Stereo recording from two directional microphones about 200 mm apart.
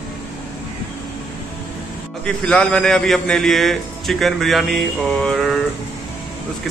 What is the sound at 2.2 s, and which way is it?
A man's voice, 5° left (ahead or behind).